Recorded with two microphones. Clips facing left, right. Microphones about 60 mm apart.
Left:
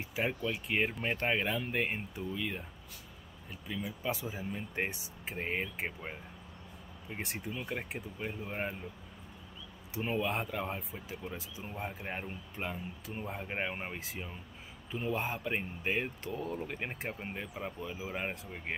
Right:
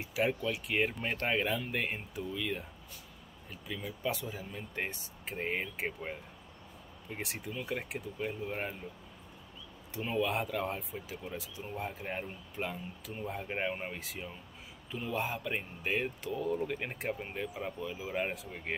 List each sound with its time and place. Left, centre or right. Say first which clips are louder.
0.1 s speech: right 3 dB; centre
3.6 s speech: even; centre
10.0 s speech: right 1 dB; centre
10.3 s speech: right 2 dB; centre
14.9 s a man's voice: left 3 dB; left
15.1 s speech: right 4 dB; centre